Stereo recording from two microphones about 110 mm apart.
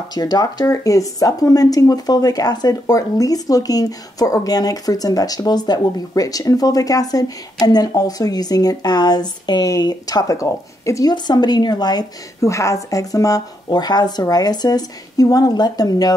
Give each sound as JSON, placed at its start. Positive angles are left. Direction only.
{"t": 0.1, "sound": "speech", "side_deg": 40}